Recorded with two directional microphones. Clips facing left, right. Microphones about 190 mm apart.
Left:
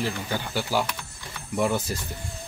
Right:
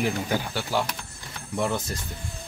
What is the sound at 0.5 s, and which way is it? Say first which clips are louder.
Speech: left 1 dB; 5° left (ahead or behind).